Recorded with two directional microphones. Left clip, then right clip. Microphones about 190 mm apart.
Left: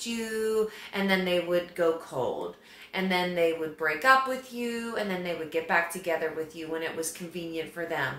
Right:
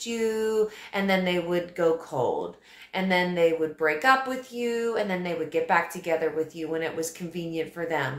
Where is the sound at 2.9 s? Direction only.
35° right (ahead or behind).